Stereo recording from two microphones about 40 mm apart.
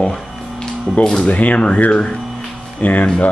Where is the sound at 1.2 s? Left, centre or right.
Left.